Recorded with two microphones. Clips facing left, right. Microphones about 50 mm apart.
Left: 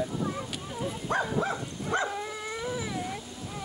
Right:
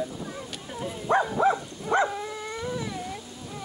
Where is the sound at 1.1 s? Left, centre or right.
Right.